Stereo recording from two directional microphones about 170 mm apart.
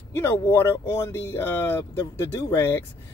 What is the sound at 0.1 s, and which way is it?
Speech, 15° left (ahead or behind).